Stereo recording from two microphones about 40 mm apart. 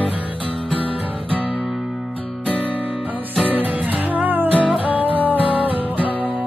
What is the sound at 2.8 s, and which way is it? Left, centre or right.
Music, right.